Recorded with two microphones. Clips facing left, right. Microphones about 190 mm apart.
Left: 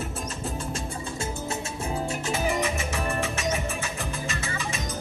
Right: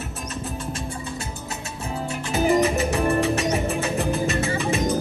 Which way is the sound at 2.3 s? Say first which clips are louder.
Right 10 dB; 35° right (ahead or behind).